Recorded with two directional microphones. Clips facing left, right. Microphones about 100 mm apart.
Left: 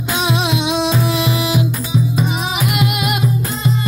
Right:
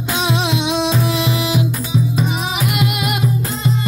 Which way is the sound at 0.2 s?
10° left (ahead or behind).